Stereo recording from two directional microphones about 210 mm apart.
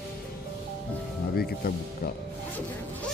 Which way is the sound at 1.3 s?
45° left (ahead or behind).